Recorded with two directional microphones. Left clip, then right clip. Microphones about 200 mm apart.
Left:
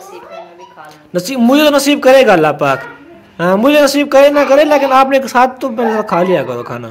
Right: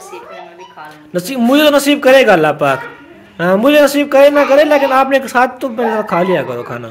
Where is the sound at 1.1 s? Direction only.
5° left (ahead or behind).